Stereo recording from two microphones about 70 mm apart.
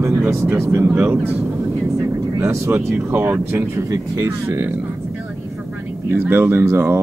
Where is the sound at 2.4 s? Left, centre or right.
Right.